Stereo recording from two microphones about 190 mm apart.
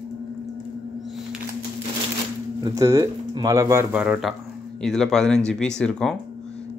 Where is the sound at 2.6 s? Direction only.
20° right (ahead or behind); by 6.2 s 5° left (ahead or behind).